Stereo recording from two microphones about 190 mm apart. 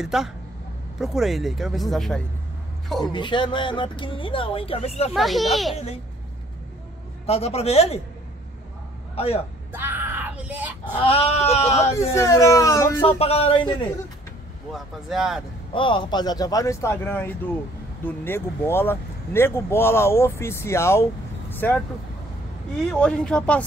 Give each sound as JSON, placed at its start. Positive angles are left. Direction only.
{"t": 0.0, "sound": "speech", "side_deg": 0}
{"t": 3.1, "sound": "speech", "side_deg": 25}
{"t": 5.1, "sound": "speech", "side_deg": 0}
{"t": 7.2, "sound": "speech", "side_deg": 35}
{"t": 9.1, "sound": "speech", "side_deg": 30}
{"t": 9.7, "sound": "yell", "side_deg": -10}
{"t": 11.1, "sound": "speech", "side_deg": 30}
{"t": 12.1, "sound": "speech", "side_deg": 15}
{"t": 13.2, "sound": "speech", "side_deg": 30}
{"t": 14.7, "sound": "speech", "side_deg": 0}
{"t": 15.7, "sound": "speech", "side_deg": 25}
{"t": 22.8, "sound": "speech", "side_deg": 5}